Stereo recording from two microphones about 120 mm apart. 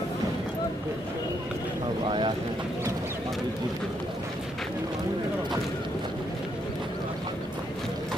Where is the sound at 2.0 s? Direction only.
40° right (ahead or behind).